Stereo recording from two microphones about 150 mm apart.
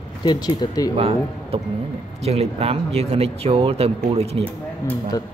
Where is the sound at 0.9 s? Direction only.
40° right (ahead or behind).